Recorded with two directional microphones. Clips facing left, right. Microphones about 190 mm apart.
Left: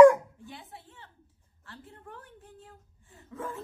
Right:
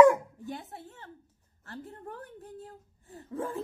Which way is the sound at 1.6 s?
45° right (ahead or behind).